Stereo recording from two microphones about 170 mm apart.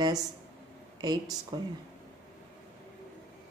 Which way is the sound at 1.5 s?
25° right (ahead or behind).